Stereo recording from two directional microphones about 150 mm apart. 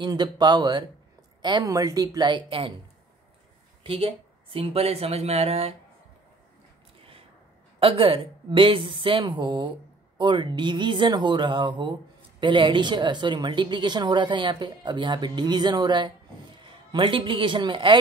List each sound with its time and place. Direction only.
0.0 s a woman's voice: 30° right (ahead or behind)
3.8 s speech: 40° right (ahead or behind)
7.8 s speech: 35° right (ahead or behind)